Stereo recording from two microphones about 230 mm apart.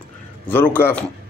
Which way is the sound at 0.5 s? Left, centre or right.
Centre.